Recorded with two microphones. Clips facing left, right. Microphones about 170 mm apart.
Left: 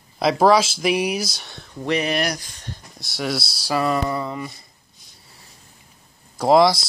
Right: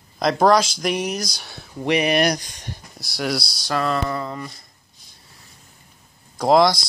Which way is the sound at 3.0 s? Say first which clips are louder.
Right 1 dB; centre (ahead or behind).